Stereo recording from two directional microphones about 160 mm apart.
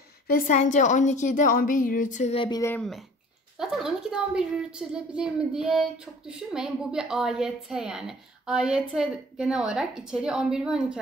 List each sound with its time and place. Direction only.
0.3 s a woman's voice: 50° left (ahead or behind)
2.3 s speech: 30° left (ahead or behind)
2.8 s a woman's voice: centre (ahead or behind)